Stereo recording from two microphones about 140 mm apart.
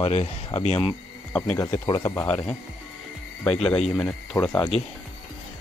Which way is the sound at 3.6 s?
50° left (ahead or behind).